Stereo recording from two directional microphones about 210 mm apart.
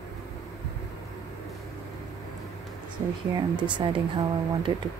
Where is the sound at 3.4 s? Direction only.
20° right (ahead or behind).